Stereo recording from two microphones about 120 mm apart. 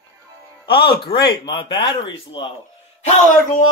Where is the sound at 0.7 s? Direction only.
45° left (ahead or behind).